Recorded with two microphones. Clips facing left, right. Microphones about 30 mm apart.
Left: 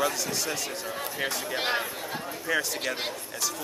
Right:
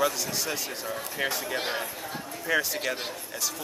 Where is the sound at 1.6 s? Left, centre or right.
Centre.